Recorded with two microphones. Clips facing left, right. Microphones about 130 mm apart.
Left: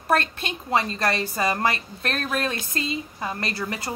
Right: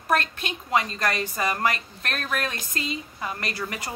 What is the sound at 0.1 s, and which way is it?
Speech, 30° left (ahead or behind).